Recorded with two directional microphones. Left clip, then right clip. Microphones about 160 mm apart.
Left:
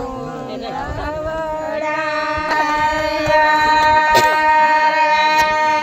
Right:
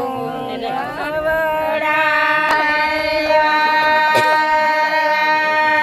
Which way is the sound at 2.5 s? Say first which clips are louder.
Even; 20° right (ahead or behind).